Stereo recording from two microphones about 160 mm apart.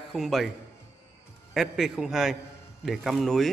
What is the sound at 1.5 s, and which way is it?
Speech, centre (ahead or behind).